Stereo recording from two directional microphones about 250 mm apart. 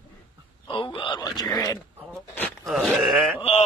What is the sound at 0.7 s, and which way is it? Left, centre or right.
Speech, centre.